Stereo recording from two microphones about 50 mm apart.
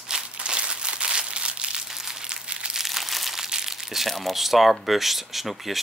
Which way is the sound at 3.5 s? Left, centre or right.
Centre.